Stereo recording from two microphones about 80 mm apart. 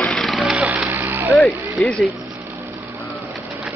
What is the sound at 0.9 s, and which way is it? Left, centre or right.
Vehicle, right.